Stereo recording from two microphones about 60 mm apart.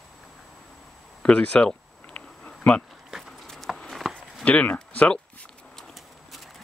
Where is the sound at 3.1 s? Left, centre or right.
Centre.